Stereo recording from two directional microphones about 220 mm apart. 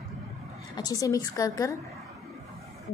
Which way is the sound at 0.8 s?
15° left (ahead or behind).